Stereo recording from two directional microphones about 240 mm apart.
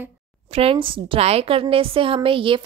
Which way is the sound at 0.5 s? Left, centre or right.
Right.